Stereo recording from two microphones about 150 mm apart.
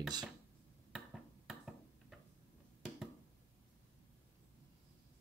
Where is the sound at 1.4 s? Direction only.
Centre (ahead or behind).